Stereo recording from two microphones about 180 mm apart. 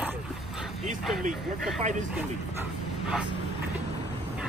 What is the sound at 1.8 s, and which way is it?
Speech, 45° right (ahead or behind).